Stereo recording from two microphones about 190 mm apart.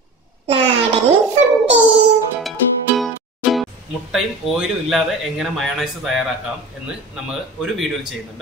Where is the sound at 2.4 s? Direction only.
Centre (ahead or behind).